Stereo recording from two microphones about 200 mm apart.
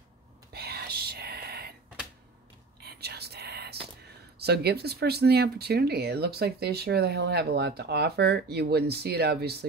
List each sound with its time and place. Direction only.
0.5 s whispering: 50° right (ahead or behind)
2.8 s whispering: 55° right (ahead or behind)
4.4 s speech: 55° right (ahead or behind)